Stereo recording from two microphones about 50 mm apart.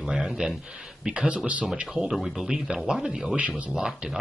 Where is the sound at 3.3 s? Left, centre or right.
Right.